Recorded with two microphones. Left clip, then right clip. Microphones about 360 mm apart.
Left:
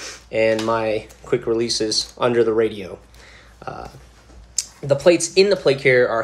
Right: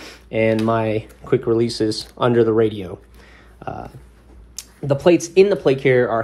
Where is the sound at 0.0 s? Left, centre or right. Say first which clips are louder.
Left 1 dB; centre.